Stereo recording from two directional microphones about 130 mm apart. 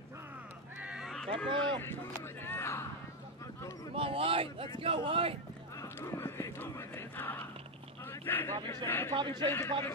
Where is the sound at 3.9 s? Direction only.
45° right (ahead or behind).